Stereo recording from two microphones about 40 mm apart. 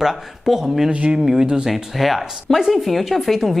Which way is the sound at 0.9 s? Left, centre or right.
Right.